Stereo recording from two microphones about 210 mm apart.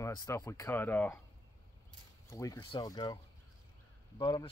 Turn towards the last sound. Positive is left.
turn(degrees=20)  # may be behind; listen again after turning